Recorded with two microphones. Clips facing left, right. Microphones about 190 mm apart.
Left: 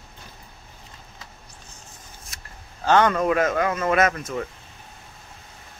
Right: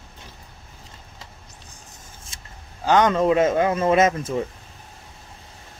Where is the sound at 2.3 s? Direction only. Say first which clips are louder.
Even; 25° right (ahead or behind).